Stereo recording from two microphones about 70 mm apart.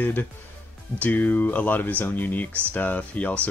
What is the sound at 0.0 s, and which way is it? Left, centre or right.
Speech, left.